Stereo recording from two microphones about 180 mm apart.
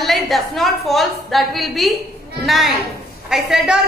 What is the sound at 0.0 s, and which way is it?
A woman's voice, centre (ahead or behind).